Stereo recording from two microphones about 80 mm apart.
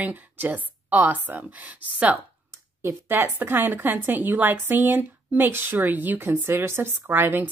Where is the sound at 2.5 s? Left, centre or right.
Right.